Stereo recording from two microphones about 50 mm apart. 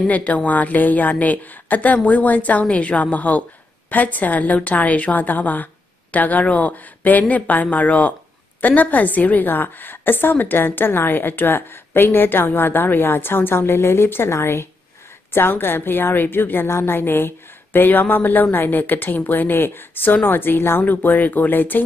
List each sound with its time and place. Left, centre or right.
0.0 s a woman's voice: left